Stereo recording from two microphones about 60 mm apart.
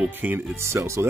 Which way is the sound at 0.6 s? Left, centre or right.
Right.